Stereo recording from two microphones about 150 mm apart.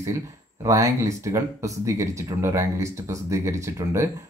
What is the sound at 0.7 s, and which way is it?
Speech, 20° right (ahead or behind).